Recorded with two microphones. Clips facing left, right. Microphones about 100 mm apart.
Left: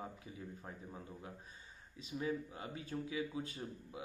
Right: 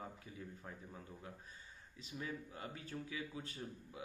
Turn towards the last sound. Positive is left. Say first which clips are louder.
# left 2 dB
turn(degrees=25)  # may be behind; listen again after turning